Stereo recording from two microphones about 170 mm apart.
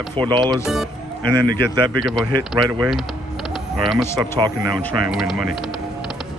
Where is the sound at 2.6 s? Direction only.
25° right (ahead or behind).